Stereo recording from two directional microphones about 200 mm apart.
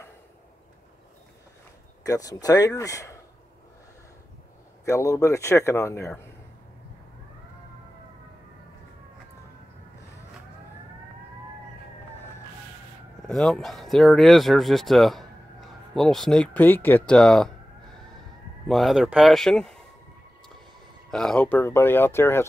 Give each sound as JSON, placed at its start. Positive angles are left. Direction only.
{"t": 2.0, "sound": "a man's voice", "side_deg": 15}
{"t": 4.8, "sound": "a man's voice", "side_deg": 15}
{"t": 13.3, "sound": "speech", "side_deg": 0}
{"t": 18.7, "sound": "speech", "side_deg": 0}
{"t": 21.1, "sound": "a man's voice", "side_deg": 5}